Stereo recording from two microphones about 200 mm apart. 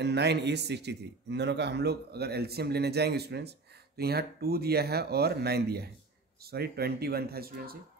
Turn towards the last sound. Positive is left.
turn(degrees=-50)  # may be behind; listen again after turning